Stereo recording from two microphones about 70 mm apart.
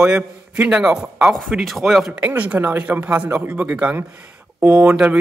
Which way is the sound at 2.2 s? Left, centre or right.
Centre.